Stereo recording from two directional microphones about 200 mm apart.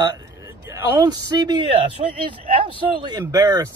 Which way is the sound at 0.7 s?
15° right (ahead or behind).